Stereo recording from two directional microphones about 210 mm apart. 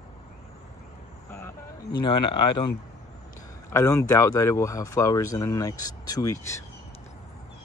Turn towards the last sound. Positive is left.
turn(degrees=15)  # may be behind; listen again after turning